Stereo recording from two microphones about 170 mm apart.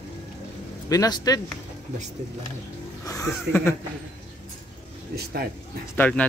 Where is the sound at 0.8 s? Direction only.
20° left (ahead or behind).